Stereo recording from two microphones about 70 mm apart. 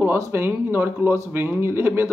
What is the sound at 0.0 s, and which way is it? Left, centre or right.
Speech, right.